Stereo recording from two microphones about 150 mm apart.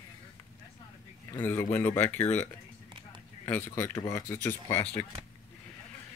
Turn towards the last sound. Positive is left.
turn(degrees=15)  # may be behind; listen again after turning